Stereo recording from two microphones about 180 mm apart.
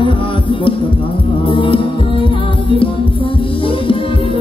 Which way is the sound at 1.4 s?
30° left (ahead or behind).